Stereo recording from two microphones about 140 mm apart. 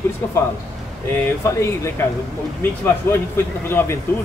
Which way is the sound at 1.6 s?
20° left (ahead or behind).